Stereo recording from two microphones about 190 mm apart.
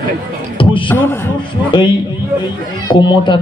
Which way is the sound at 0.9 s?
10° left (ahead or behind).